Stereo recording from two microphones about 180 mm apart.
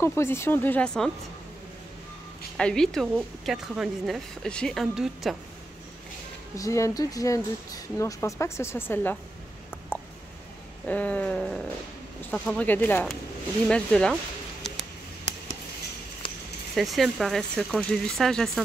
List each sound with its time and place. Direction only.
0.0 s speech: 15° left (ahead or behind)
2.5 s speech: 5° left (ahead or behind)
6.5 s speech: 15° left (ahead or behind)
10.9 s speech: 10° left (ahead or behind)
16.2 s a sound: 30° left (ahead or behind)
16.7 s speech: centre (ahead or behind)